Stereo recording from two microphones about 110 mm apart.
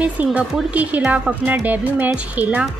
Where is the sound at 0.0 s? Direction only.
15° right (ahead or behind).